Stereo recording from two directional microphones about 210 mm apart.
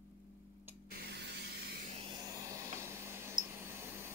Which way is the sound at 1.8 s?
30° right (ahead or behind).